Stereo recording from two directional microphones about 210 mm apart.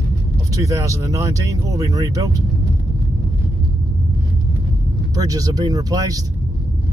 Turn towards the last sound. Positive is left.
turn(degrees=-15)  # may be behind; listen again after turning